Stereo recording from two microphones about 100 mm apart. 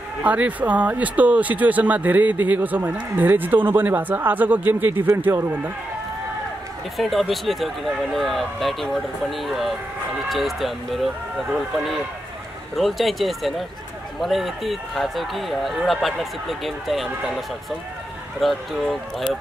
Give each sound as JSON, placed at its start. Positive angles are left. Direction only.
{"t": 0.2, "sound": "speech", "side_deg": -15}
{"t": 7.0, "sound": "speech", "side_deg": 0}
{"t": 18.4, "sound": "speech", "side_deg": 0}